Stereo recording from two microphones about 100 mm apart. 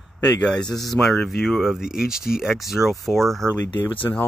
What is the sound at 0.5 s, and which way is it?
Speech, 5° left (ahead or behind).